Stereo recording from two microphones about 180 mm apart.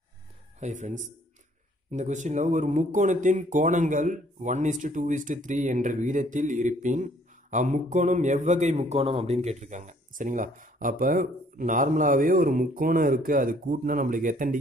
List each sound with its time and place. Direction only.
0.6 s a man's voice: 40° right (ahead or behind)